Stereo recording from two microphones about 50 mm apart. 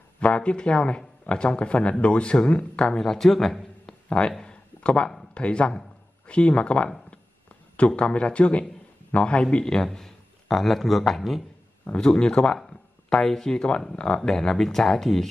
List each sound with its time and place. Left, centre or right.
0.2 s speech: left
3.0 s a man's voice: centre
4.5 s a sound: left
5.3 s speech: left
9.8 s speech: centre
11.8 s speech: centre
14.3 s speech: centre